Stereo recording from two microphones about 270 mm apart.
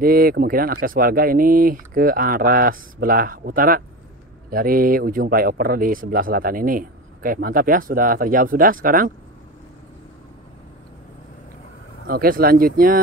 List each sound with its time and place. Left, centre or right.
0.0 s speech: right
12.1 s speech: right